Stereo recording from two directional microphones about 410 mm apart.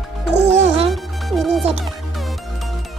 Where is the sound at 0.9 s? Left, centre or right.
Centre.